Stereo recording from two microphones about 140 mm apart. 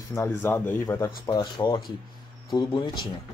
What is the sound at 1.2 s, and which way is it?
Speech, 30° left (ahead or behind).